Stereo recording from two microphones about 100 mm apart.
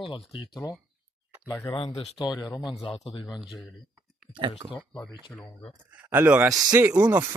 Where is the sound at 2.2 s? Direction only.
40° left (ahead or behind).